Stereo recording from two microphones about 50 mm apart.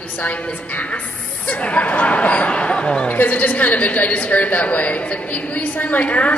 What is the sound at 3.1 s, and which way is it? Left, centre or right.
A woman's voice, left.